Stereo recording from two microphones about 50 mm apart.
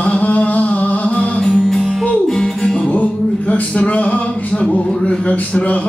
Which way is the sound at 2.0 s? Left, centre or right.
Centre.